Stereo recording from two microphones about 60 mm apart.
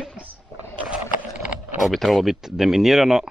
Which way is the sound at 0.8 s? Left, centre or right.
Centre.